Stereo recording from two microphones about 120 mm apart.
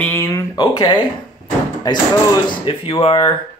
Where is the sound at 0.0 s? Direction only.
20° left (ahead or behind).